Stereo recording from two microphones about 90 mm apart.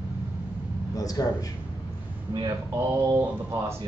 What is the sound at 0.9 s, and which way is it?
Speech, 45° left (ahead or behind).